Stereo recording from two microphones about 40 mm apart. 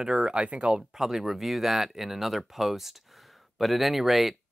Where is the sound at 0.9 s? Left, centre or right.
Centre.